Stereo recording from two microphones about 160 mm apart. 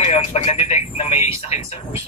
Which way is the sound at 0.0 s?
40° left (ahead or behind).